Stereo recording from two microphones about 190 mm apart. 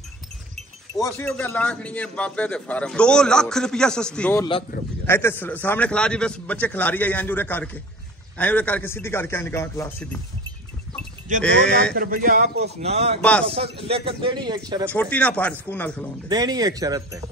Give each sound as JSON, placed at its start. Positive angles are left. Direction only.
{"t": 0.9, "sound": "a man's voice", "side_deg": 15}
{"t": 11.4, "sound": "speech", "side_deg": 5}
{"t": 11.9, "sound": "a man's voice", "side_deg": -50}
{"t": 12.8, "sound": "speech", "side_deg": -35}
{"t": 13.2, "sound": "a man's voice", "side_deg": 5}
{"t": 13.5, "sound": "speech", "side_deg": -30}
{"t": 14.9, "sound": "a man's voice", "side_deg": 10}
{"t": 16.3, "sound": "speech", "side_deg": -20}